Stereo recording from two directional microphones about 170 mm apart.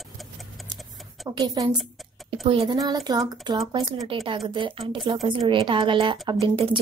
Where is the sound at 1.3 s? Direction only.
20° right (ahead or behind).